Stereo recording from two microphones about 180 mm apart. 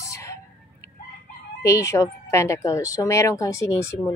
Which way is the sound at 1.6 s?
15° left (ahead or behind).